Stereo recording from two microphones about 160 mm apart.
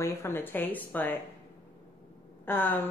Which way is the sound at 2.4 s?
10° left (ahead or behind).